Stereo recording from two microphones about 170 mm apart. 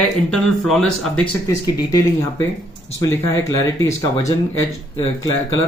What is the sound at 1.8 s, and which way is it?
Speech, 20° left (ahead or behind).